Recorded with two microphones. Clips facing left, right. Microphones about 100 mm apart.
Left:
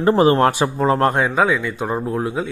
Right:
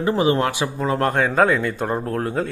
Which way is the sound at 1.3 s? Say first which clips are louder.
Even; centre (ahead or behind).